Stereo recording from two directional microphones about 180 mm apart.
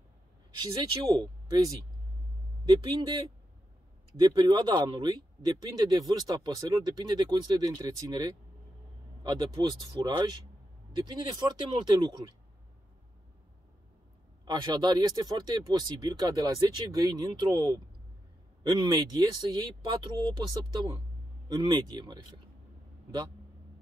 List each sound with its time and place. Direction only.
0.6 s speech: 20° right (ahead or behind)
2.6 s speech: 25° right (ahead or behind)
4.2 s speech: 20° right (ahead or behind)
14.4 s speech: 25° right (ahead or behind)
21.5 s speech: 25° right (ahead or behind)